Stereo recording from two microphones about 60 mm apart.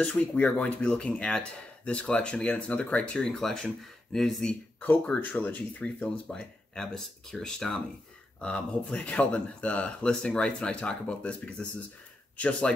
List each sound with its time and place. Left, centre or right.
0.0 s speech: left
0.8 s speech: centre
5.4 s speech: left